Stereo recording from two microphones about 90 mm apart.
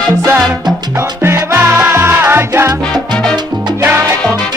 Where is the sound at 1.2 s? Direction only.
30° right (ahead or behind).